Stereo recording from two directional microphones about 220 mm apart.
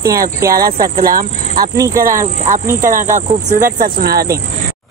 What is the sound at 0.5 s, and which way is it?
Speech, 40° right (ahead or behind).